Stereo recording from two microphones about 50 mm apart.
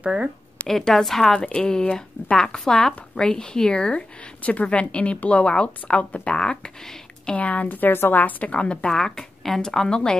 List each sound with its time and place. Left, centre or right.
0.0 s speech: right
0.7 s a woman's voice: centre
1.5 s a woman's voice: centre
7.3 s a woman's voice: left
8.2 s a woman's voice: left
8.9 s a woman's voice: centre